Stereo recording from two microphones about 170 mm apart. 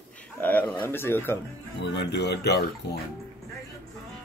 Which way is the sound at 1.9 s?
80° left.